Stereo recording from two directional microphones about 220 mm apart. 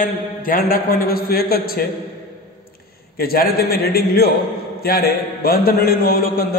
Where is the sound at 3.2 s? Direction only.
40° left (ahead or behind).